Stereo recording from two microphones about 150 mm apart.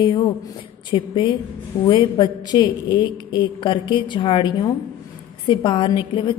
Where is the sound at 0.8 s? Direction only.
30° left (ahead or behind).